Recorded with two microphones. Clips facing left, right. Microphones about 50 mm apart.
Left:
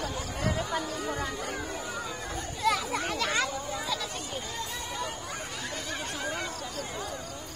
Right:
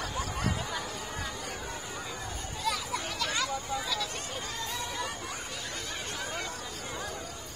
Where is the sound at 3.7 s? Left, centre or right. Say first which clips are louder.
Even; centre.